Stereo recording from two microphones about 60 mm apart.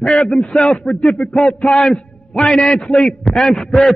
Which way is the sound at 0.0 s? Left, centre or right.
Centre.